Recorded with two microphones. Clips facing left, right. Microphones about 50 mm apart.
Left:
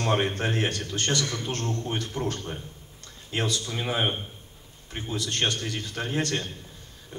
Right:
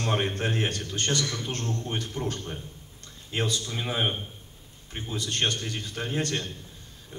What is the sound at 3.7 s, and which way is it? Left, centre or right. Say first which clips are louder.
Speech: left 3 dB; centre.